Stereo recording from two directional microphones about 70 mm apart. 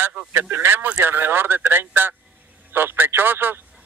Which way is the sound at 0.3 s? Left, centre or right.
Right.